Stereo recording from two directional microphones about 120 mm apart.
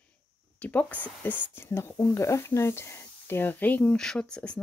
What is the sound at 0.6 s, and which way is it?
Speech, 15° left (ahead or behind).